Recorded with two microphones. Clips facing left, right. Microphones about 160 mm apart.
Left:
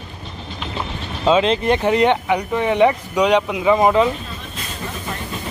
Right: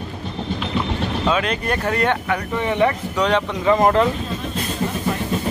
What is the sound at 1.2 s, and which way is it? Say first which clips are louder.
Speech: left 8 dB; 25° left (ahead or behind).